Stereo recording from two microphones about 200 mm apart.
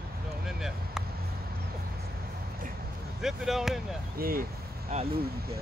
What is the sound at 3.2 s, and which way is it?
Speech, centre (ahead or behind).